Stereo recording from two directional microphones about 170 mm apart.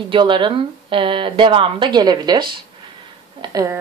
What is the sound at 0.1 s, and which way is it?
Speech, 30° right (ahead or behind).